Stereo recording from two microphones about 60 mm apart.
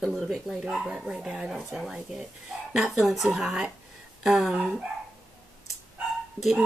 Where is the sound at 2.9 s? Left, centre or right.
Centre.